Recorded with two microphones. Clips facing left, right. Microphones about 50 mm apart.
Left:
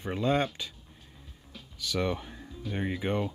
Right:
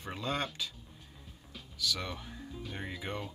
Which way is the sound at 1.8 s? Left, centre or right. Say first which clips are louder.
Left 7 dB; left.